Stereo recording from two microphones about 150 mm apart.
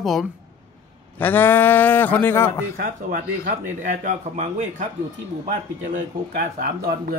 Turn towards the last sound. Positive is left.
turn(degrees=-90)